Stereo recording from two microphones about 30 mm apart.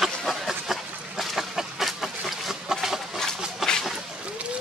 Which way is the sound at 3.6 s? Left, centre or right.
Centre.